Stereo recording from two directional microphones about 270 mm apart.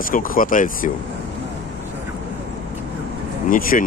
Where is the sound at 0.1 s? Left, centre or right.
Left.